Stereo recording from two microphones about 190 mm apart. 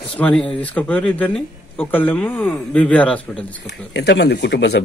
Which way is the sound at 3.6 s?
65° left (ahead or behind).